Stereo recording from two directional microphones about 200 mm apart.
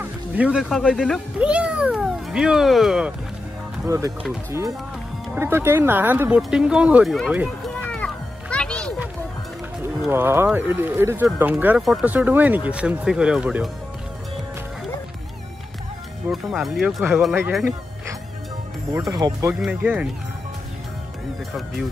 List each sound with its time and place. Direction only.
0.0 s speech: 5° right (ahead or behind)
3.8 s speech: 15° right (ahead or behind)
7.8 s children playing: 5° left (ahead or behind)
10.0 s speech: 10° right (ahead or behind)
16.3 s speech: centre (ahead or behind)
19.1 s speech: 20° right (ahead or behind)
19.6 s speech: 5° right (ahead or behind)